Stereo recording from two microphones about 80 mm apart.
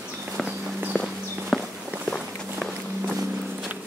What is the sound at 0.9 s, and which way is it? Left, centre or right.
Walk, centre.